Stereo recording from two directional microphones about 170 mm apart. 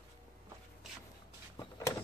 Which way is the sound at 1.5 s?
20° left (ahead or behind).